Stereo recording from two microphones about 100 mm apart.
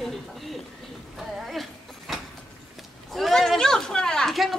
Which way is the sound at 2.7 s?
Centre (ahead or behind).